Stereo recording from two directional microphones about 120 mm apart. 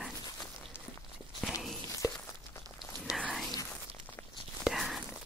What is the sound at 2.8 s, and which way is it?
Whispering, 5° right (ahead or behind).